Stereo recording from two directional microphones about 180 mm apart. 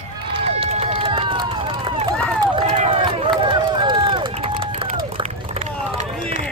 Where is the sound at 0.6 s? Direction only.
35° right (ahead or behind).